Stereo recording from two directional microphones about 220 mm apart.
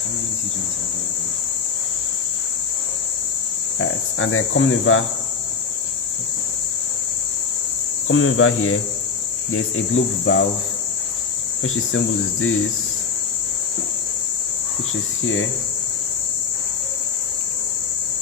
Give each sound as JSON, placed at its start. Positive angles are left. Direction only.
{"t": 3.7, "sound": "cricket", "side_deg": 65}
{"t": 8.1, "sound": "cricket", "side_deg": 65}
{"t": 11.6, "sound": "cricket", "side_deg": 65}